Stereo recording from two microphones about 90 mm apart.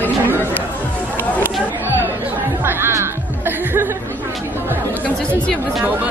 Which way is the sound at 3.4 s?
25° right (ahead or behind).